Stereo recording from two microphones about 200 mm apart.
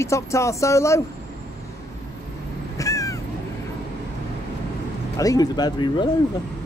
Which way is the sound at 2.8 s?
15° left (ahead or behind).